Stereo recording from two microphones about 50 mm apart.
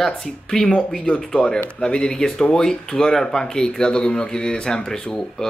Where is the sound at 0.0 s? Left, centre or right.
Centre.